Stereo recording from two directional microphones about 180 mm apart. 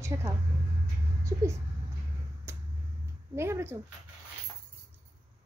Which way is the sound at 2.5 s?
15° right (ahead or behind).